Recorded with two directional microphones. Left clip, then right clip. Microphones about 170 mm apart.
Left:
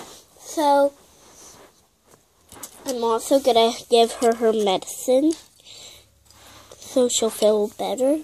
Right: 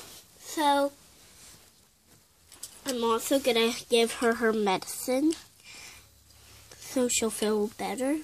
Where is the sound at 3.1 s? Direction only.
55° right (ahead or behind).